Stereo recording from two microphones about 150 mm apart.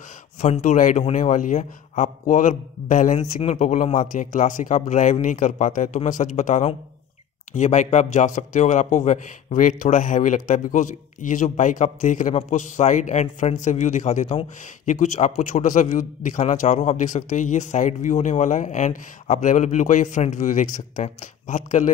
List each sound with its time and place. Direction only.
0.4 s a man's voice: 55° left (ahead or behind)